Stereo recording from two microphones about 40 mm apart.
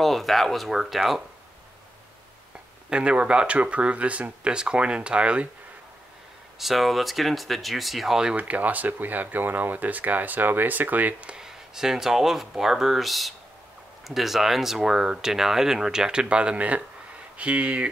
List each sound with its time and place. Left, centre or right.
0.0 s speech: centre
2.9 s speech: right
6.6 s speech: centre
8.4 s speech: right
11.4 s speech: centre; by 17.8 s right